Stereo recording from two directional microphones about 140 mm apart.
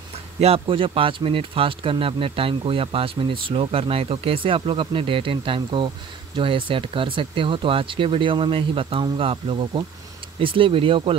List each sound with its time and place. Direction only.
0.4 s speech: 45° right (ahead or behind)